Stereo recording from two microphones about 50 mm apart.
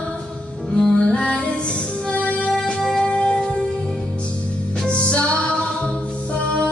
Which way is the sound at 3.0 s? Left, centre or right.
Centre.